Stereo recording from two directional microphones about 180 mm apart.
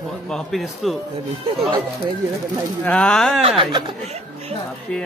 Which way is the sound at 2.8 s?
5° left (ahead or behind).